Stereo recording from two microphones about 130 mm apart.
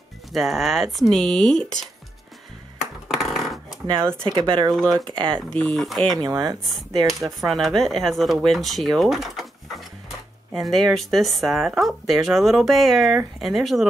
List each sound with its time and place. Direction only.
0.3 s speech: centre (ahead or behind)
3.1 s a sound: centre (ahead or behind)
4.2 s speech: 35° right (ahead or behind)
5.3 s speech: 5° left (ahead or behind)
6.2 s speech: 30° right (ahead or behind)
7.0 s speech: centre (ahead or behind)
10.5 s speech: centre (ahead or behind)